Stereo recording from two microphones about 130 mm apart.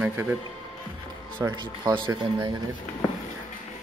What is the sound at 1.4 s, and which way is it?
Speech, 25° right (ahead or behind).